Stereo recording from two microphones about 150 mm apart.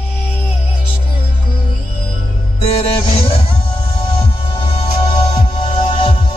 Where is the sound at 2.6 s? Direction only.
35° left (ahead or behind).